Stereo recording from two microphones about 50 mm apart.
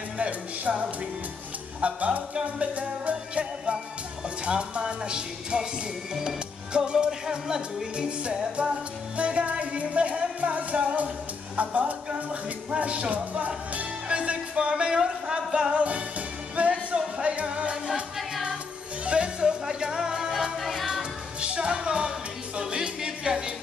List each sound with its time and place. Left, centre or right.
0.2 s speech: right
1.8 s music: right
19.0 s music: centre